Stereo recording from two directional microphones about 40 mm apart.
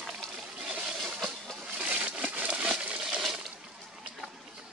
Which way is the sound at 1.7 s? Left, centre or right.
Right.